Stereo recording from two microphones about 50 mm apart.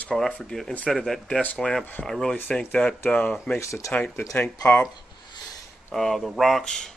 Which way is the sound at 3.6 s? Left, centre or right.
Left.